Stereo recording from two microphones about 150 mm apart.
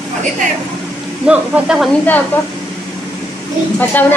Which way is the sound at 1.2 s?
10° right (ahead or behind).